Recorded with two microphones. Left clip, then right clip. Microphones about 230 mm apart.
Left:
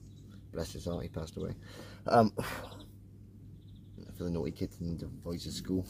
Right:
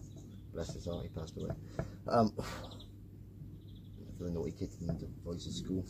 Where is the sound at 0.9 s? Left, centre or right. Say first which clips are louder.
Left 3 dB; left.